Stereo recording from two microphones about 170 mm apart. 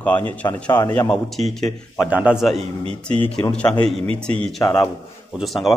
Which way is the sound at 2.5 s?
35° right (ahead or behind).